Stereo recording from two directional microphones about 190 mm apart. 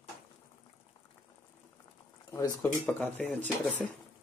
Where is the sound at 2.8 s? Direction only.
5° left (ahead or behind).